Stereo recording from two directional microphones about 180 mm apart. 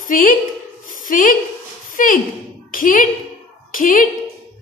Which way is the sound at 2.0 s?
50° left (ahead or behind).